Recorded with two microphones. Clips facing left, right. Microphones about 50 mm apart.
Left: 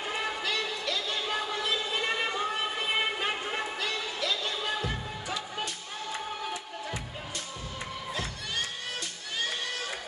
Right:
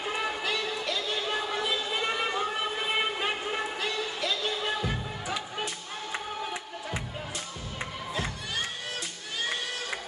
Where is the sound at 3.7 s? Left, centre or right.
Centre.